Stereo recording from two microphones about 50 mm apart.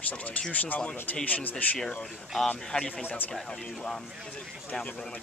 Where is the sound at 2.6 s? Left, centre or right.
Centre.